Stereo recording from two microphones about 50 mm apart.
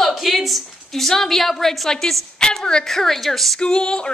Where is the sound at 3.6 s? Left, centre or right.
Centre.